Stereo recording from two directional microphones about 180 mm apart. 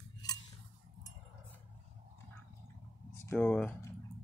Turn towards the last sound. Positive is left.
turn(degrees=5)  # may be behind; listen again after turning